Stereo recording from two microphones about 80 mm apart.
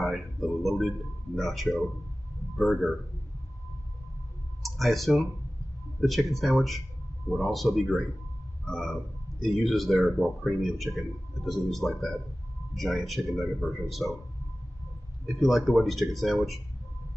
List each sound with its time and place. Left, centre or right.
0.0 s speech: centre
4.6 s speech: centre
8.6 s a sound: centre
9.4 s speech: centre
15.2 s speech: centre